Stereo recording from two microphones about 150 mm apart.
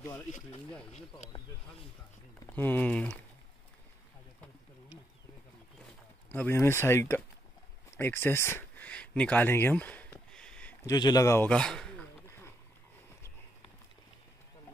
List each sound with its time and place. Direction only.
0.0 s speech: 15° left (ahead or behind)
2.5 s speech: 15° left (ahead or behind)
6.3 s speech: 15° left (ahead or behind)
8.0 s a sound: 15° left (ahead or behind)
10.9 s a man's voice: 25° left (ahead or behind)
11.4 s speech: 5° left (ahead or behind)
12.3 s a sound: 15° left (ahead or behind)